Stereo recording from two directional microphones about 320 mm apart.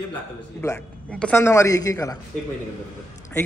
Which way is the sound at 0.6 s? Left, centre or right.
Centre.